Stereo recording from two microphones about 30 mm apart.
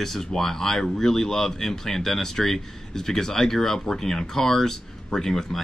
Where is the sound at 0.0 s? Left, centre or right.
Centre.